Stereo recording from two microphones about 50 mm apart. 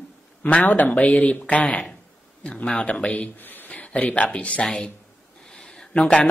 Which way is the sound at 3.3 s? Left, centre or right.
Left.